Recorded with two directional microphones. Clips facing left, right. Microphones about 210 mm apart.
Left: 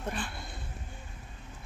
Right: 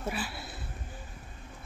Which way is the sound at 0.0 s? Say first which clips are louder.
Right 1 dB; 5° right (ahead or behind).